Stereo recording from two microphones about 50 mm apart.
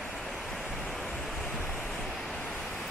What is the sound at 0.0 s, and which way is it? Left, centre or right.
Waves, centre.